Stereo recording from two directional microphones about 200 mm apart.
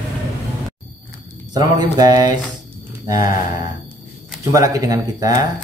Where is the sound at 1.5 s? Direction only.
20° right (ahead or behind).